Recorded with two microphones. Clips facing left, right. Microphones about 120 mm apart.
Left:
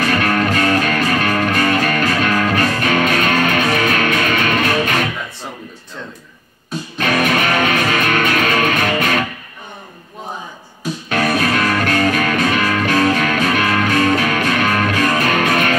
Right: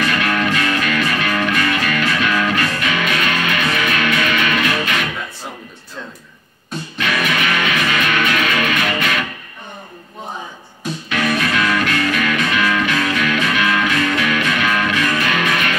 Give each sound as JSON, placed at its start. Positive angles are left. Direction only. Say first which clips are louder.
{"t": 0.0, "sound": "music", "louder": "left 2 dB", "side_deg": 40}
{"t": 7.0, "sound": "music", "louder": "left 4 dB", "side_deg": 45}
{"t": 11.1, "sound": "music", "louder": "left 3 dB", "side_deg": 40}